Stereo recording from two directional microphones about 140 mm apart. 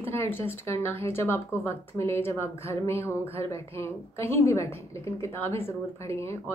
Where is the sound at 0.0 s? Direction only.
15° left (ahead or behind).